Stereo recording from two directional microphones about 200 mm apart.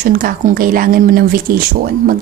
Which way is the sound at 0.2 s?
45° right (ahead or behind).